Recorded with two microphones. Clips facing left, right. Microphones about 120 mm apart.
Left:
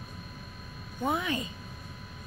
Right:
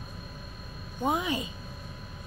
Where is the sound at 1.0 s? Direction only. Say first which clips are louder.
Right 2 dB; 20° right (ahead or behind).